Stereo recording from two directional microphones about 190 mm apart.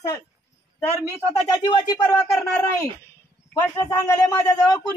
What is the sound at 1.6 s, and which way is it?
Speech, 20° left (ahead or behind).